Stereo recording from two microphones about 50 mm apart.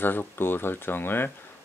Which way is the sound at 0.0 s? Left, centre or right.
Left.